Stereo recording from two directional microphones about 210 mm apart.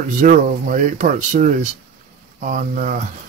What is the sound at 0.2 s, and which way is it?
Speech, 35° right (ahead or behind).